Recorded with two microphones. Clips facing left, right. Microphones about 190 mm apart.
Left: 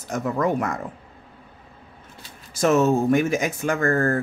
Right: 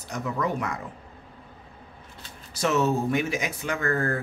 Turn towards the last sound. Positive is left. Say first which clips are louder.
# left 5 dB
turn(degrees=45)  # may be behind; listen again after turning